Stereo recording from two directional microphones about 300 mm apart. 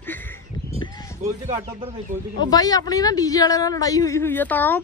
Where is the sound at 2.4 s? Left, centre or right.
Centre.